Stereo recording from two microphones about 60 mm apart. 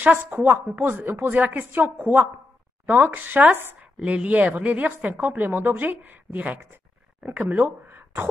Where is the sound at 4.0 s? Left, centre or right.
Centre.